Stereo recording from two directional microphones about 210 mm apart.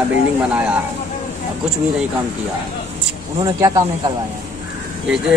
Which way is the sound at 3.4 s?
20° right (ahead or behind).